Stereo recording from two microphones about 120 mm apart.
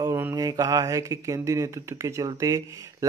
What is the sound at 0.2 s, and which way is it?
Speech, 25° right (ahead or behind).